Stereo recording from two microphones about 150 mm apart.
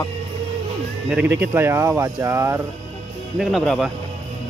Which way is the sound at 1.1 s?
15° right (ahead or behind).